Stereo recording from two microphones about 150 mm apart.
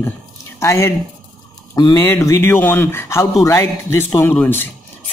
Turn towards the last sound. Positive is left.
turn(degrees=15)  # may be behind; listen again after turning